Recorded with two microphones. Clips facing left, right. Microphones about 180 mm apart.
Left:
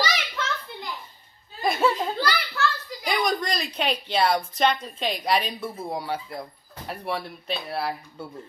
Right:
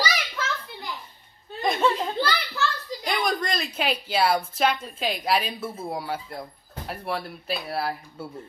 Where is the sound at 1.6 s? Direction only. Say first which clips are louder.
Even; 5° left (ahead or behind).